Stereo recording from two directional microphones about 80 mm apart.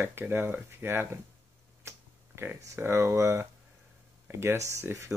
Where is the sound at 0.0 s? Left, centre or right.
Right.